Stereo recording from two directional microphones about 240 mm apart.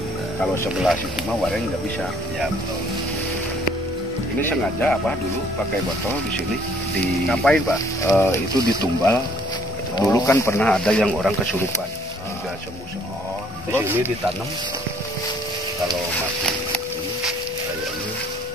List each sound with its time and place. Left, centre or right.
4.4 s speech: centre
7.2 s speech: centre
8.1 s speech: centre
13.7 s speech: centre